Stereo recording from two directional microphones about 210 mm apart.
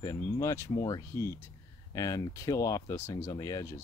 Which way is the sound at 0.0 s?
15° left (ahead or behind).